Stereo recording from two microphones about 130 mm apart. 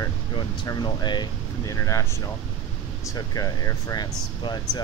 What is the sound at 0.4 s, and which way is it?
Speech, 35° left (ahead or behind).